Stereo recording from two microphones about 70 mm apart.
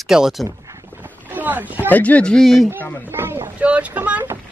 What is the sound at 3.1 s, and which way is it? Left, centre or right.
Speech, right.